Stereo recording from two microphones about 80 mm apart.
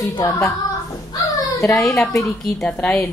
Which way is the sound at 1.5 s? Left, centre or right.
Left.